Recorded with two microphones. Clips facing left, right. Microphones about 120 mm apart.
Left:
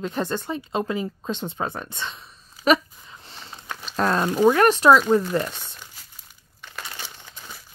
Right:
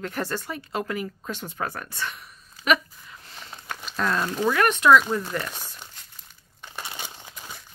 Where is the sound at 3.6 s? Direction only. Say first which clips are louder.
Even; 5° right (ahead or behind).